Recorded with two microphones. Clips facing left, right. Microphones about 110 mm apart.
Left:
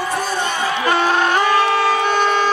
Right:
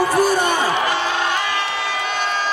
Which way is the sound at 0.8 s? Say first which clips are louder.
Left 4 dB; 50° left (ahead or behind).